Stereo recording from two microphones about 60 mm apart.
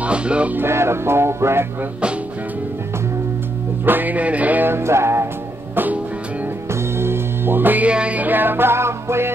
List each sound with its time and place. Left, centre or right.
0.0 s speech: centre
0.6 s music: right
3.8 s music: right
4.6 s music: right
5.8 s music: right
6.7 s music: right
7.9 s music: right